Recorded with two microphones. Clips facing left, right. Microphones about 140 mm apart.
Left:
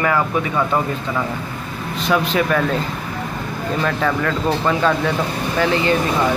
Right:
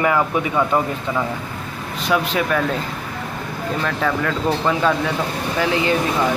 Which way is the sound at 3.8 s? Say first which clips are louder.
Left 2 dB; centre (ahead or behind).